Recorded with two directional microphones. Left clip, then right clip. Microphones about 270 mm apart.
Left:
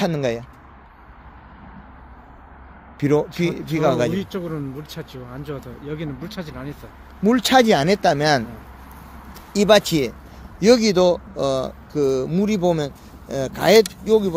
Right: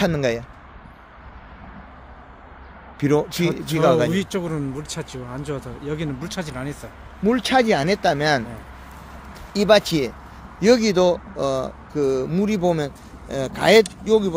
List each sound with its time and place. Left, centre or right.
0.0 s speech: centre
3.0 s a man's voice: centre
4.1 s speech: right
7.2 s speech: centre